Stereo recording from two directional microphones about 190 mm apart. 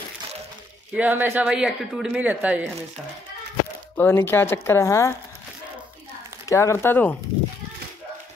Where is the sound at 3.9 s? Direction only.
10° left (ahead or behind).